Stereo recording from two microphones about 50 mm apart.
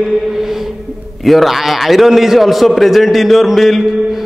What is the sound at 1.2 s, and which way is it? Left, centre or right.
A man's voice, centre.